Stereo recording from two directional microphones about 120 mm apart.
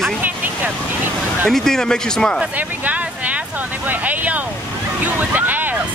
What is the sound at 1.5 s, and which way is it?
Speech, 5° left (ahead or behind).